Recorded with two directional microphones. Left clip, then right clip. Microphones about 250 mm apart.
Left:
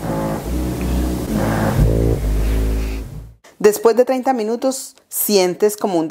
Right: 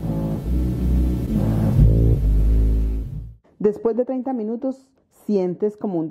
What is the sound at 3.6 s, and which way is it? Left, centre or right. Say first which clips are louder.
A woman's voice: left 8 dB; centre.